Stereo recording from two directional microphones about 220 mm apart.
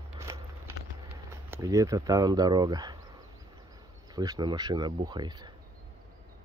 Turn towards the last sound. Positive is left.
turn(degrees=-20)  # may be behind; listen again after turning